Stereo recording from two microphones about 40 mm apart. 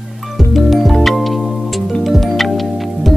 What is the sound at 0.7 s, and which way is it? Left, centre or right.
Music, centre.